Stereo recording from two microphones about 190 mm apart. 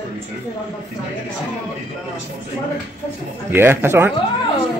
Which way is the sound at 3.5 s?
10° right (ahead or behind).